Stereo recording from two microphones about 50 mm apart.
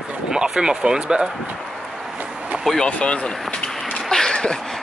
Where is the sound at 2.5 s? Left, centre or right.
Right.